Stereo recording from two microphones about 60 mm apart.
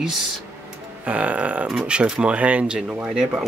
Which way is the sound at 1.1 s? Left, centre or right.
Right.